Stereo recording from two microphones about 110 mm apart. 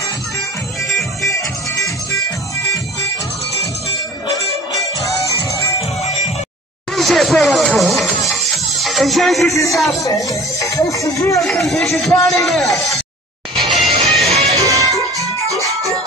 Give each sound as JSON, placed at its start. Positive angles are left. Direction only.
{"t": 4.7, "sound": "music", "side_deg": 30}
{"t": 7.0, "sound": "music", "side_deg": 0}
{"t": 9.7, "sound": "speech", "side_deg": 0}
{"t": 10.0, "sound": "speech", "side_deg": 30}
{"t": 11.3, "sound": "speech", "side_deg": 0}
{"t": 12.1, "sound": "a man's voice", "side_deg": 30}
{"t": 12.4, "sound": "speech", "side_deg": 0}
{"t": 13.6, "sound": "music", "side_deg": 0}
{"t": 14.3, "sound": "music", "side_deg": -75}
{"t": 14.6, "sound": "music", "side_deg": -30}